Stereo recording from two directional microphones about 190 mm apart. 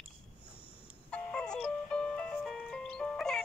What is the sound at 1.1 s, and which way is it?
Music, 5° left (ahead or behind).